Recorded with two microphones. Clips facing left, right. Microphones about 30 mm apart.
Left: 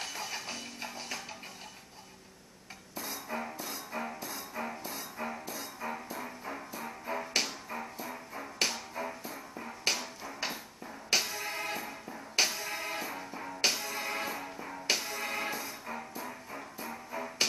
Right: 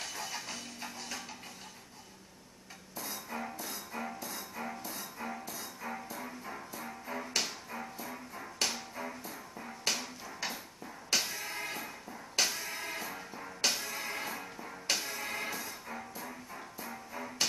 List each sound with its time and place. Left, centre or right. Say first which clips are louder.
0.0 s music: left 2 dB; centre
2.9 s dishes: left 3 dB; left
3.5 s music: left 2 dB; left
4.0 s music: left 1 dB; centre
8.5 s music: left 2 dB; left
8.9 s music: left 3 dB; centre
9.9 s a sound: left 2 dB; left
11.1 s music: left 2 dB; centre
13.6 s music: left 2 dB; left